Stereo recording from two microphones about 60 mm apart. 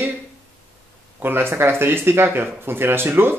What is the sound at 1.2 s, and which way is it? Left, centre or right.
Speech, right.